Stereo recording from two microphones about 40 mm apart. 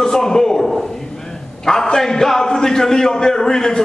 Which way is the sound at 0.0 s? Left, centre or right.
Centre.